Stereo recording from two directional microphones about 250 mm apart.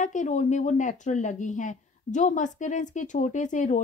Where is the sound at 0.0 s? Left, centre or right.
Left.